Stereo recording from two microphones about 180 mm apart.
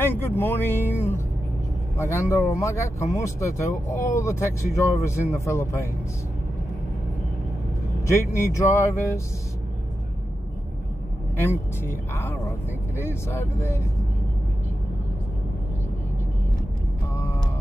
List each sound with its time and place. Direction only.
0.0 s speech: 10° left (ahead or behind)
8.4 s speech: 15° left (ahead or behind)
11.3 s speech: 15° left (ahead or behind)